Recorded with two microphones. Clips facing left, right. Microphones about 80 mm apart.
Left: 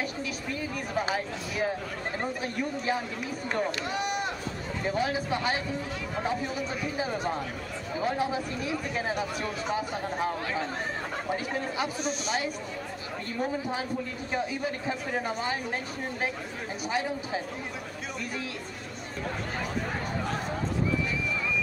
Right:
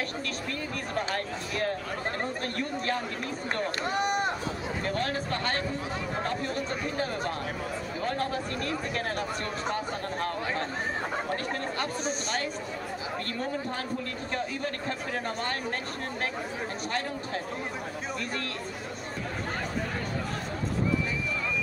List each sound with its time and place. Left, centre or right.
0.5 s speech: centre
3.8 s a sound: right
4.8 s a man's voice: centre
13.4 s speech: centre